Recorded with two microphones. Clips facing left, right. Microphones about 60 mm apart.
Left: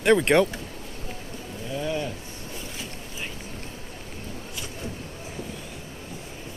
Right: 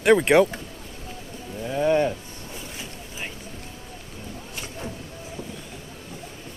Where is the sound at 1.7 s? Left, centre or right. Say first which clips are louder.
Right 8 dB; right.